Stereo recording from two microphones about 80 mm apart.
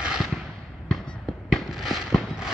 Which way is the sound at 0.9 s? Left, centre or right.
Centre.